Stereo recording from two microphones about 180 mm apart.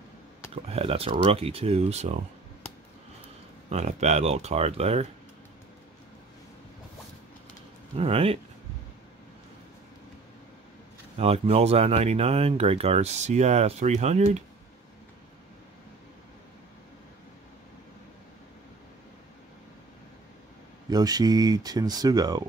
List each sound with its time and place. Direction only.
0.7 s speech: 35° right (ahead or behind)
3.7 s speech: 35° right (ahead or behind)
7.9 s speech: 35° right (ahead or behind)
11.1 s speech: 35° right (ahead or behind)
20.9 s speech: 20° right (ahead or behind)